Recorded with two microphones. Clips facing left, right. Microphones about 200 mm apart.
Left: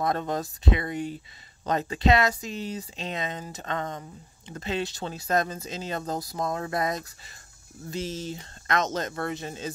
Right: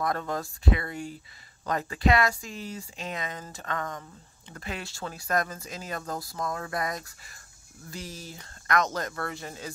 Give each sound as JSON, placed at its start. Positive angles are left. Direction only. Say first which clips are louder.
{"t": 0.0, "sound": "speech", "louder": "left 3 dB", "side_deg": 20}